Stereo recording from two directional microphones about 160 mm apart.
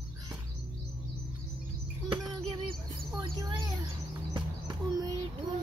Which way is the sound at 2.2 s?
25° right (ahead or behind).